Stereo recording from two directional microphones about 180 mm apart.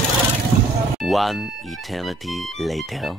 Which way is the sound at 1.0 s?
Centre (ahead or behind).